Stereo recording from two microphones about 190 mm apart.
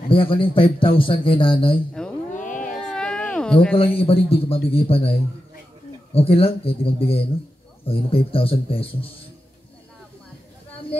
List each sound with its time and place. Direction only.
0.1 s a man's voice: 30° left (ahead or behind)
2.0 s a sound: 5° left (ahead or behind)
2.3 s a sound: 45° left (ahead or behind)
2.9 s cat: 5° left (ahead or behind)
3.7 s a man's voice: 30° left (ahead or behind)
6.1 s a man's voice: 30° left (ahead or behind)